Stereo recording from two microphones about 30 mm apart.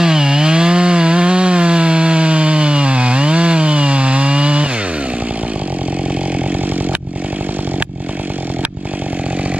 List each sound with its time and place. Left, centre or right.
0.0 s chainsaw: right